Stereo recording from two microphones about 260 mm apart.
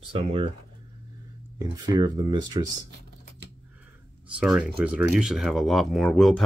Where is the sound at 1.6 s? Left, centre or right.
Centre.